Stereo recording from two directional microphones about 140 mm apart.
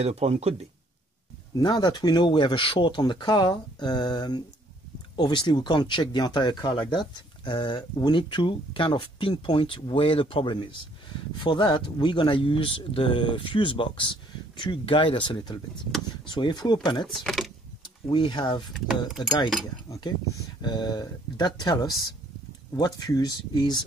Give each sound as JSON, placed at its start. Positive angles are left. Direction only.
{"t": 0.0, "sound": "speech", "side_deg": -50}
{"t": 1.5, "sound": "speech", "side_deg": 30}
{"t": 17.1, "sound": "speech", "side_deg": 0}
{"t": 18.0, "sound": "speech", "side_deg": 35}
{"t": 19.9, "sound": "speech", "side_deg": 25}